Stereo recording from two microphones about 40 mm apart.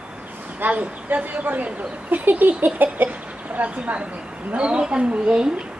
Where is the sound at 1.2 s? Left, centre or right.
Right.